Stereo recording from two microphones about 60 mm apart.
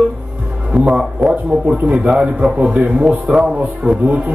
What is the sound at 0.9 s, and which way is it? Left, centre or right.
A man's voice, centre.